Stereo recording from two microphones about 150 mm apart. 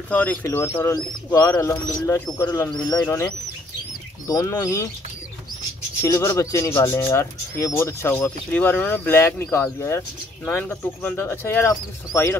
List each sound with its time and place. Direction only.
0.1 s speech: 10° left (ahead or behind)
4.3 s speech: 25° left (ahead or behind)
6.1 s speech: 20° left (ahead or behind)